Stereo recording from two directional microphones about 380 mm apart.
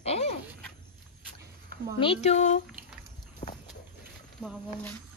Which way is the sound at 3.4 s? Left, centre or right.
Centre.